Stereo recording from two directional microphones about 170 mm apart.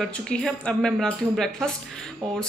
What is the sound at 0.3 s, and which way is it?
Speech, 5° left (ahead or behind).